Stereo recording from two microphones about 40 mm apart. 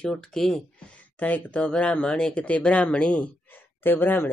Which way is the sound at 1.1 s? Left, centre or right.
Left.